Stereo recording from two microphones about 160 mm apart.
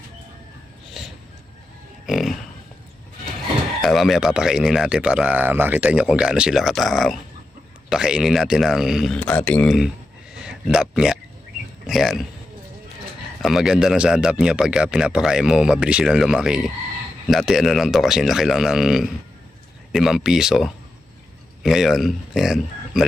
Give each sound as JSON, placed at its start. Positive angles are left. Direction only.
{"t": 2.0, "sound": "speech", "side_deg": 0}
{"t": 3.8, "sound": "speech", "side_deg": 0}
{"t": 13.4, "sound": "speech", "side_deg": 0}